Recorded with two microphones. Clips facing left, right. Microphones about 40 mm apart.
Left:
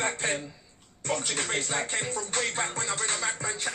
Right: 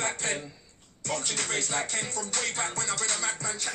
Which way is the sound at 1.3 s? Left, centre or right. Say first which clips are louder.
Left 1 dB; left.